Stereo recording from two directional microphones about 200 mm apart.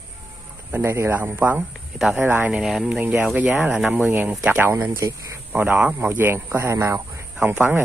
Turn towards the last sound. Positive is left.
turn(degrees=-10)  # may be behind; listen again after turning